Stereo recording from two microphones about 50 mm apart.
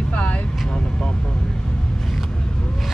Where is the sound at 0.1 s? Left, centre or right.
Left.